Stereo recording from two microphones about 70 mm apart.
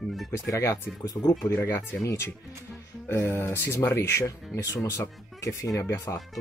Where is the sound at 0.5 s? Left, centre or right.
Left.